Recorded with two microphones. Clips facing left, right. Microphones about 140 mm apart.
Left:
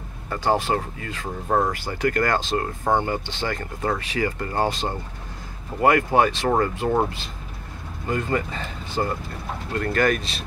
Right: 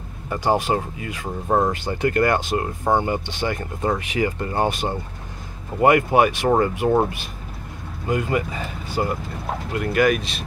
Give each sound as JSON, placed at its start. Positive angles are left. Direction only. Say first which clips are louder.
{"t": 0.3, "sound": "speech", "louder": "right 2 dB", "side_deg": -15}